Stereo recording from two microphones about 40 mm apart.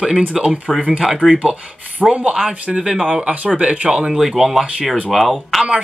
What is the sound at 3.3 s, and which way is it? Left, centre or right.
Speech, right.